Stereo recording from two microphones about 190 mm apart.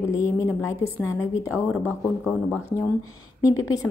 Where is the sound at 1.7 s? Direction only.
5° left (ahead or behind).